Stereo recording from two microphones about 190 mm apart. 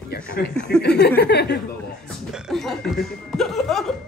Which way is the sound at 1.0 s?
60° left (ahead or behind).